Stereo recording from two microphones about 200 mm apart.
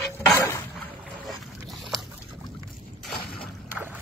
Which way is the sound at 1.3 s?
Centre (ahead or behind).